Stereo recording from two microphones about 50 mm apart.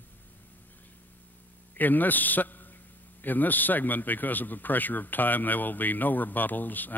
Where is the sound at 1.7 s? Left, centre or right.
Left.